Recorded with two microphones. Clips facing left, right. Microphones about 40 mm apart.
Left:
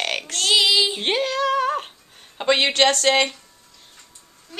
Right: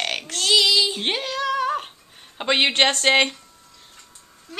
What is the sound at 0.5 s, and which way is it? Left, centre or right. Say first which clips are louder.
Child singing: even; centre.